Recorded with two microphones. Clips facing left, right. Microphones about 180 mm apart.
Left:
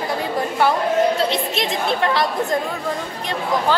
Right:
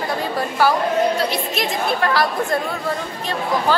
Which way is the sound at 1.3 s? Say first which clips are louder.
Left 1 dB; 25° left (ahead or behind).